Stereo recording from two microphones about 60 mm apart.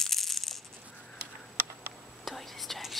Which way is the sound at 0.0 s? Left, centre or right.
Centre.